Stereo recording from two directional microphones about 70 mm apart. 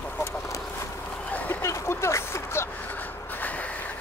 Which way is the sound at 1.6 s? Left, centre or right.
Left.